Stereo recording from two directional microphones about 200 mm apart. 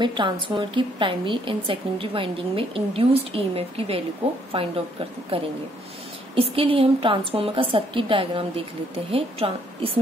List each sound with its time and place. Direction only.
0.0 s a woman's voice: 25° right (ahead or behind)